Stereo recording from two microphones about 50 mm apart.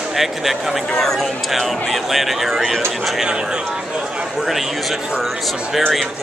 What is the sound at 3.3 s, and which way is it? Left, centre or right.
Speech, centre.